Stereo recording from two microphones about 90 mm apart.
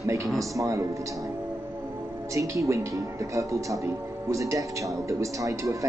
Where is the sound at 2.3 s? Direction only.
35° right (ahead or behind).